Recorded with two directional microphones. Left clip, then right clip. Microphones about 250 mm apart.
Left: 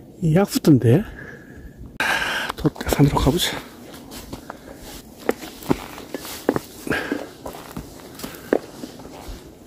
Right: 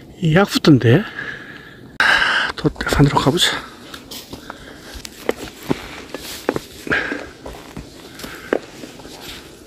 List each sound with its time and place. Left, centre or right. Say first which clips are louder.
0.2 s speech: right 5 dB; centre
2.0 s a sound: right 7 dB; centre
5.2 s walk: right 1 dB; centre